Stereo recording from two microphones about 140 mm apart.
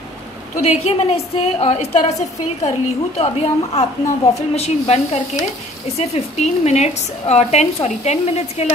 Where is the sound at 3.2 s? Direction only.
50° left (ahead or behind).